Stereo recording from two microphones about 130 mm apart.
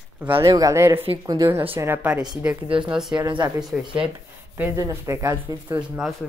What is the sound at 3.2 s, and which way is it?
Speech, 35° right (ahead or behind).